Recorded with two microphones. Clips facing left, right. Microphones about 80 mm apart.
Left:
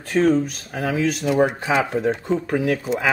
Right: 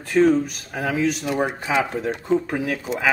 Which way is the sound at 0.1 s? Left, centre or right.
Centre.